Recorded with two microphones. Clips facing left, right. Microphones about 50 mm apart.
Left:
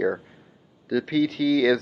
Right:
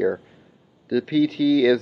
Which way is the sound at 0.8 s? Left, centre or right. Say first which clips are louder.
Right 3 dB; left.